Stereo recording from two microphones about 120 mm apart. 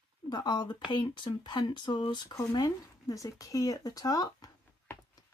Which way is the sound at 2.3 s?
30° left (ahead or behind).